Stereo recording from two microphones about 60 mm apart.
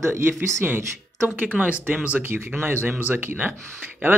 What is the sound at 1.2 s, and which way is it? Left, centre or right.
Speech, right.